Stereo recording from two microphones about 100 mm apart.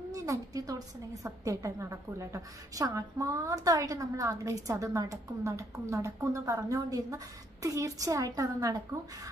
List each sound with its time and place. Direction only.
0.1 s a woman's voice: 35° right (ahead or behind)